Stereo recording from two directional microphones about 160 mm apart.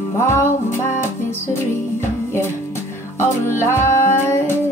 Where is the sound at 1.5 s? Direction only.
15° left (ahead or behind).